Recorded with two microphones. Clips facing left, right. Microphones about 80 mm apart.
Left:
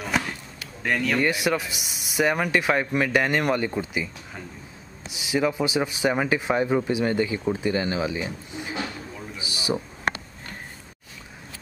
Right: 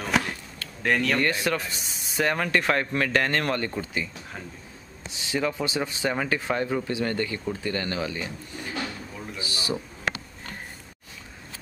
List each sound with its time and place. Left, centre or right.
0.0 s chop: centre
0.8 s speech: centre
9.4 s a sound: centre